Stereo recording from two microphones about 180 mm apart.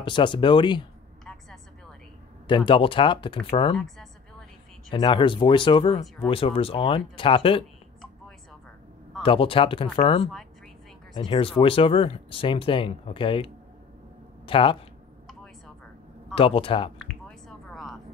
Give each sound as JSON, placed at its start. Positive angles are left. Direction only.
{"t": 0.0, "sound": "speech", "side_deg": 25}
{"t": 1.2, "sound": "vehicle", "side_deg": 5}
{"t": 2.4, "sound": "speech", "side_deg": 25}
{"t": 3.7, "sound": "a woman's voice", "side_deg": 0}
{"t": 4.9, "sound": "speech", "side_deg": 25}
{"t": 9.2, "sound": "speech", "side_deg": 30}
{"t": 15.2, "sound": "a sound", "side_deg": 0}
{"t": 16.3, "sound": "speech", "side_deg": 30}
{"t": 17.0, "sound": "a sound", "side_deg": 0}